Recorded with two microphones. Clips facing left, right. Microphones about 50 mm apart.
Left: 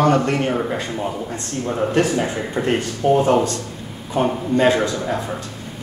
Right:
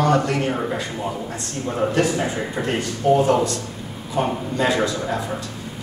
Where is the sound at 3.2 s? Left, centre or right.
Left.